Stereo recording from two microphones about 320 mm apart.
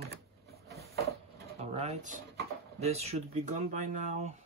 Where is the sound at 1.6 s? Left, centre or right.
Centre.